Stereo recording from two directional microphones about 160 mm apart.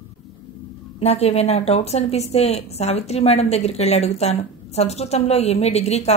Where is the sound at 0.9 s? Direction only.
40° left (ahead or behind).